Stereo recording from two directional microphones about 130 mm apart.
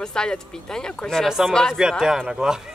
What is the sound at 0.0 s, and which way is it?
A woman's voice, 5° left (ahead or behind).